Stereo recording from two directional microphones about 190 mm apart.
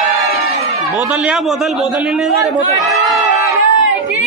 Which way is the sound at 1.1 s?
5° right (ahead or behind).